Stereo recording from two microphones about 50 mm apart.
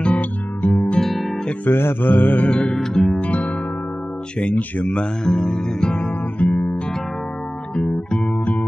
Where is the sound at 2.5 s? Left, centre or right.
Centre.